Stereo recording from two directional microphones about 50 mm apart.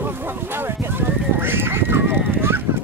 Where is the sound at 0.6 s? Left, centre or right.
Right.